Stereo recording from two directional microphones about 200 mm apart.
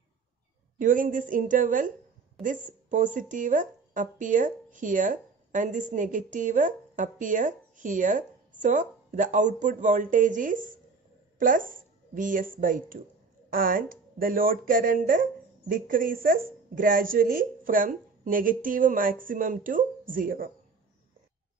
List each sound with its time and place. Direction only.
0.7 s a woman's voice: 40° right (ahead or behind)